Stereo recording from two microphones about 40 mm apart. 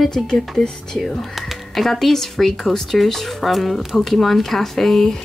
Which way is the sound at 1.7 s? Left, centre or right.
Centre.